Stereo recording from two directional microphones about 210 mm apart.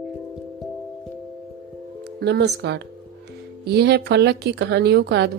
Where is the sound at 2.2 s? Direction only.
55° right (ahead or behind).